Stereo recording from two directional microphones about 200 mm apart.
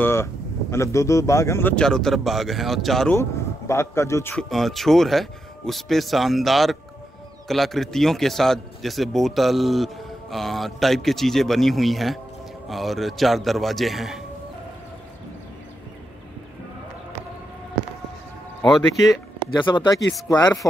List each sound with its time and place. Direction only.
0.0 s speech: 10° left (ahead or behind)
3.2 s speech: 15° left (ahead or behind)
19.4 s speech: 20° left (ahead or behind)